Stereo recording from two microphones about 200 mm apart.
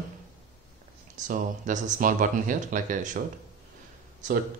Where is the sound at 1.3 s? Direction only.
40° right (ahead or behind).